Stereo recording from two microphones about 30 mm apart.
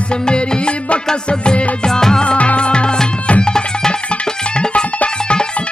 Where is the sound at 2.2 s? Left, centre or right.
Left.